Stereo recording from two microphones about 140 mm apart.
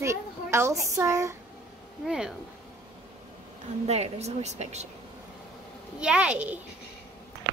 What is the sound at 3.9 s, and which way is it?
Speech, 50° right (ahead or behind).